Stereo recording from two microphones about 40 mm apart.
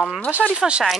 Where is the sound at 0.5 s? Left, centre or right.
Right.